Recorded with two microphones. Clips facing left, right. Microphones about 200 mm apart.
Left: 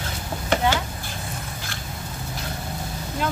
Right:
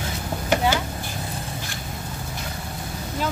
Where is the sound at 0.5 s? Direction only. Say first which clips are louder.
Even; 10° right (ahead or behind).